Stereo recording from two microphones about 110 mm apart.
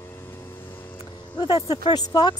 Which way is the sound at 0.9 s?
45° left (ahead or behind).